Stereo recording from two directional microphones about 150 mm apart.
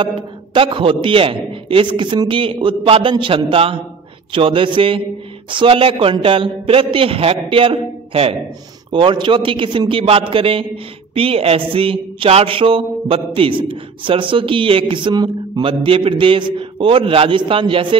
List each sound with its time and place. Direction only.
0.6 s speech: 35° right (ahead or behind)